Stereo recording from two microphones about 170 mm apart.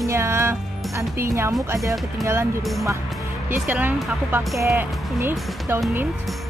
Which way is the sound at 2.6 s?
Centre (ahead or behind).